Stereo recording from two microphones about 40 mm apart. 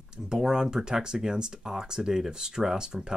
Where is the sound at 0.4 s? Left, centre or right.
Centre.